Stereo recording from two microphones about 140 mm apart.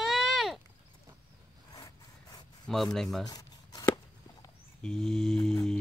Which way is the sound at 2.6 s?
Centre (ahead or behind).